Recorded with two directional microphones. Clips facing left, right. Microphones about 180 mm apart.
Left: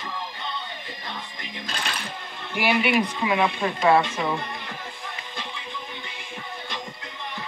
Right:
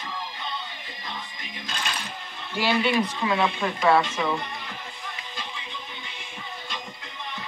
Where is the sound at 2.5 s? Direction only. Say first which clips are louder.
Left 1 dB; 15° left (ahead or behind).